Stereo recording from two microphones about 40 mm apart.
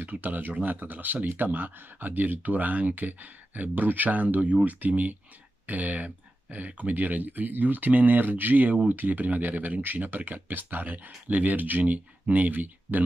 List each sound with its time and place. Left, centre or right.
0.0 s speech: right